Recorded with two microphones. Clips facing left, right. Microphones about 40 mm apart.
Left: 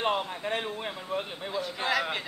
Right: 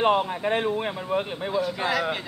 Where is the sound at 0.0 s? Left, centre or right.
Right.